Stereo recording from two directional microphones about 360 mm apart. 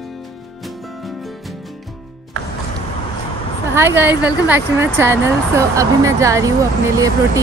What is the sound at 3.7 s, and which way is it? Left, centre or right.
Speech, centre.